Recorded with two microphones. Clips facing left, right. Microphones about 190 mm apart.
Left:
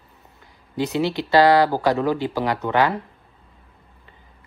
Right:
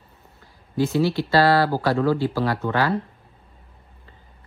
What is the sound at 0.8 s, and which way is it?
Speech, 20° left (ahead or behind).